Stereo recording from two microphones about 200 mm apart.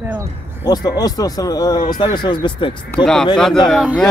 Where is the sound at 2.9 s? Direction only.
5° left (ahead or behind).